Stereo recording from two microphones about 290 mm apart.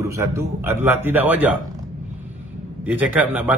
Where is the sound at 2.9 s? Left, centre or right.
Centre.